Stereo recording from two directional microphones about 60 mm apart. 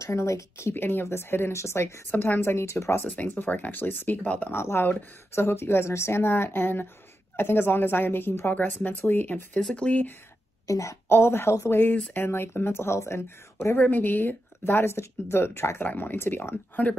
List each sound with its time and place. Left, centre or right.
0.0 s speech: left
0.7 s speech: left
2.0 s speech: left
3.2 s speech: left
4.6 s speech: left
9.8 s speech: centre
10.7 s speech: left
11.1 s speech: left
13.7 s speech: left
14.6 s speech: left
15.8 s speech: left